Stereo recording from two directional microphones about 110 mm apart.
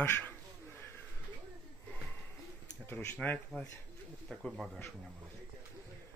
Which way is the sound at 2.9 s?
15° left (ahead or behind).